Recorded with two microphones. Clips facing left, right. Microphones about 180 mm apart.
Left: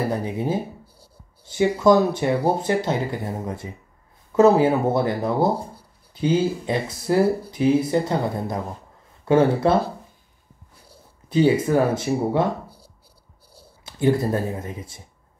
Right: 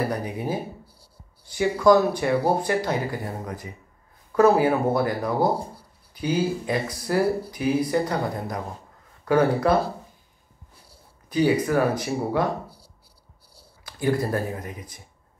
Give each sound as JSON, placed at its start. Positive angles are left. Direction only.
{"t": 0.1, "sound": "speech", "side_deg": 25}
{"t": 11.2, "sound": "speech", "side_deg": 25}
{"t": 13.8, "sound": "speech", "side_deg": 25}